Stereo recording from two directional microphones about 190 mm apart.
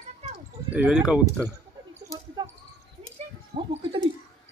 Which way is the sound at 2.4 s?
25° right (ahead or behind).